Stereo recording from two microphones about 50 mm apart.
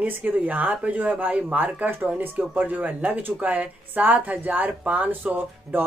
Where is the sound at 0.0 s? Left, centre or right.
Right.